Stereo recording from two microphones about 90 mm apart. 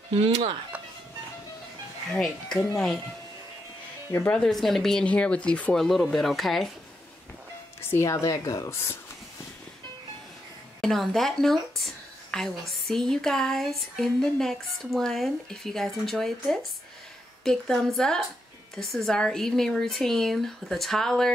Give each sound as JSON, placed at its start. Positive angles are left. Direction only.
{"t": 0.1, "sound": "speech", "side_deg": -70}
{"t": 2.1, "sound": "speech", "side_deg": 5}
{"t": 4.3, "sound": "speech", "side_deg": 5}
{"t": 7.9, "sound": "speech", "side_deg": 30}
{"t": 10.8, "sound": "speech", "side_deg": 0}